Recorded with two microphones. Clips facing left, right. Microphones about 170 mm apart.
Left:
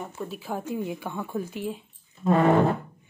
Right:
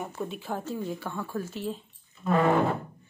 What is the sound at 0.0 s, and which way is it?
Speech, centre (ahead or behind).